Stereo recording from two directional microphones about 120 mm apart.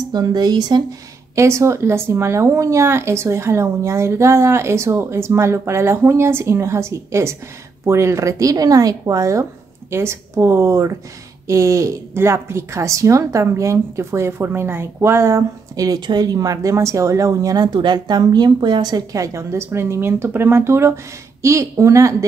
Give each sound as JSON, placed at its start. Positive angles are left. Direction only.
{"t": 0.1, "sound": "speech", "side_deg": -35}
{"t": 1.3, "sound": "a woman's voice", "side_deg": -25}